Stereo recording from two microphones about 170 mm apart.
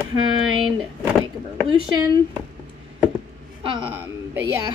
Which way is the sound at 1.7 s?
30° right (ahead or behind).